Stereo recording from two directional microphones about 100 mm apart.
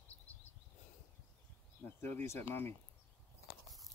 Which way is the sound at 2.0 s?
25° left (ahead or behind).